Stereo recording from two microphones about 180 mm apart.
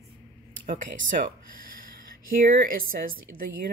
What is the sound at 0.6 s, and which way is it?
Speech, 45° right (ahead or behind).